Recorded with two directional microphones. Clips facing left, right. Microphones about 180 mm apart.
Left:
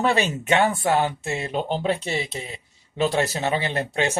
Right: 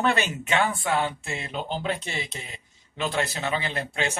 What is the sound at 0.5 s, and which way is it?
Speech, 40° left (ahead or behind).